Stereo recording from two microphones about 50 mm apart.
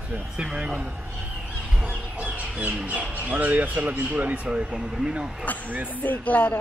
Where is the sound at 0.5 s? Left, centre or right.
Right.